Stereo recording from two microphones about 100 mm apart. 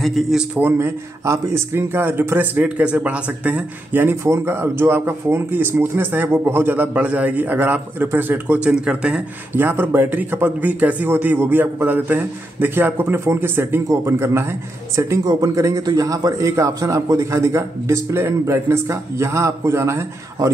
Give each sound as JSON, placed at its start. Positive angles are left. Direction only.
{"t": 0.0, "sound": "a man's voice", "side_deg": 0}
{"t": 0.6, "sound": "speech", "side_deg": -20}
{"t": 9.6, "sound": "a man's voice", "side_deg": -20}